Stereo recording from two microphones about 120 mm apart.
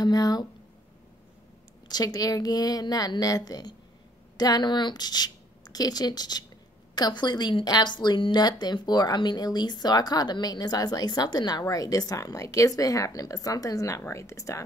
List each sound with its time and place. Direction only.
0.0 s a woman's voice: 35° left (ahead or behind)
1.9 s a woman's voice: 35° left (ahead or behind)